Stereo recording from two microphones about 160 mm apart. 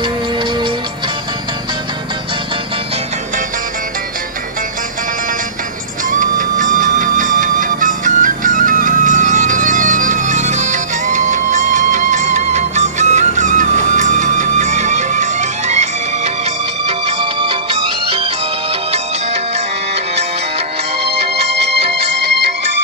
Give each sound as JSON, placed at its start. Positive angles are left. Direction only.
{"t": 6.0, "sound": "music", "side_deg": -55}
{"t": 16.8, "sound": "music", "side_deg": -35}
{"t": 21.5, "sound": "music", "side_deg": -90}